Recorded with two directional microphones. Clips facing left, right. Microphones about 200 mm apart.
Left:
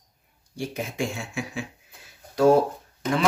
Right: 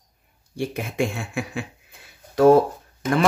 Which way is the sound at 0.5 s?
60° right (ahead or behind).